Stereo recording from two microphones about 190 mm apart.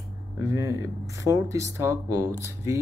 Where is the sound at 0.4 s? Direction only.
15° right (ahead or behind).